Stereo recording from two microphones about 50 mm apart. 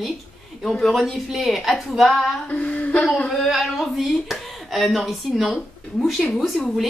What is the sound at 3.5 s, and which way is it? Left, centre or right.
A woman's voice, centre.